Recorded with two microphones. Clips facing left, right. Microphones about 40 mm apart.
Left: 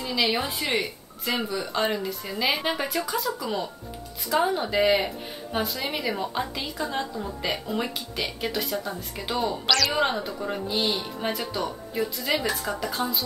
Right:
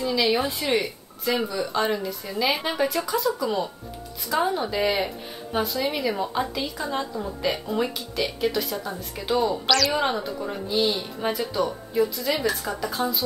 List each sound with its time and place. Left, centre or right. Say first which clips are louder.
0.0 s speech: right 3 dB; centre